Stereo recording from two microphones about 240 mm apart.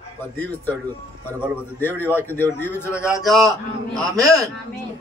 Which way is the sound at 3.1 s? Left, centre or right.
Centre.